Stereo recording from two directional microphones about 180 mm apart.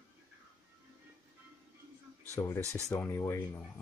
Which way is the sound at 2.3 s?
15° left (ahead or behind).